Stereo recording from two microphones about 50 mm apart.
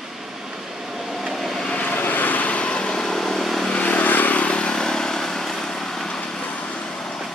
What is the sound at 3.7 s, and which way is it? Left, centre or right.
Vehicle, left.